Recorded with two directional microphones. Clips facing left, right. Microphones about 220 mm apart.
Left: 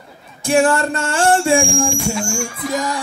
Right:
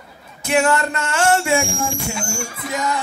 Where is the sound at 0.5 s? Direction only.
30° left (ahead or behind).